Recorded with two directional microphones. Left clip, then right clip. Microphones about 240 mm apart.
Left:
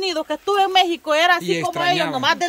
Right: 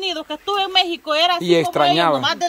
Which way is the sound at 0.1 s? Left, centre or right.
Centre.